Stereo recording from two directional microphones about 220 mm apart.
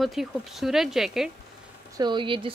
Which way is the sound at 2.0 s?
20° right (ahead or behind).